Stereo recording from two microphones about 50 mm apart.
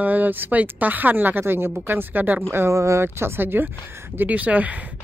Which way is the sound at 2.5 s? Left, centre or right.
Right.